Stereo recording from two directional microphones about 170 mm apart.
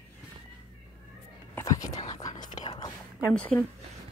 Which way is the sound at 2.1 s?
25° left (ahead or behind).